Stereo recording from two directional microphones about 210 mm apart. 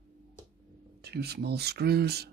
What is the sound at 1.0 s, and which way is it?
Speech, 50° right (ahead or behind).